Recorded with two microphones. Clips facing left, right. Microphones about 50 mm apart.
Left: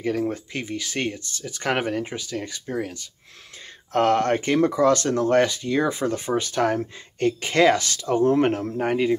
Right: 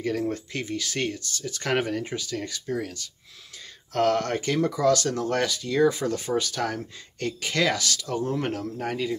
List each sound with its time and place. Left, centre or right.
0.0 s speech: centre